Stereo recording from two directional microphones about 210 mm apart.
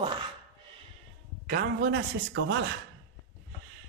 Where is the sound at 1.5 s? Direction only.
45° right (ahead or behind).